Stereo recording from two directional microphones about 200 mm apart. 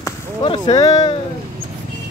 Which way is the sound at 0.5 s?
30° left (ahead or behind).